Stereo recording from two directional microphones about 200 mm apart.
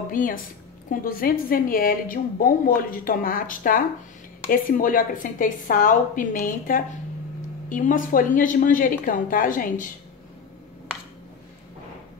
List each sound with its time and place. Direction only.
0.1 s a woman's voice: 40° left (ahead or behind)